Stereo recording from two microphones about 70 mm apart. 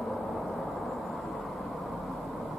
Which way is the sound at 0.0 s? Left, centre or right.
Centre.